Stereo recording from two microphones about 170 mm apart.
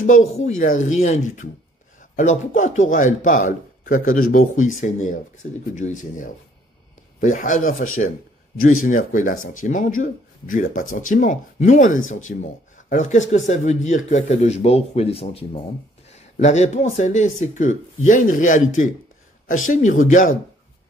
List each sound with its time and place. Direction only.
0.0 s speech: 50° left (ahead or behind)